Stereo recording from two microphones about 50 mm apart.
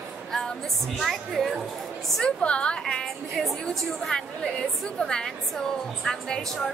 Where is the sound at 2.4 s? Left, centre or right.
Left.